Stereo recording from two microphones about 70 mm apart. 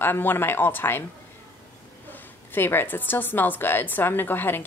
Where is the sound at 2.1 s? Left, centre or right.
Left.